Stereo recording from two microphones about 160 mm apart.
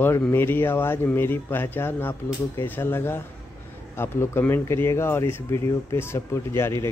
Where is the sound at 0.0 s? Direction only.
15° left (ahead or behind).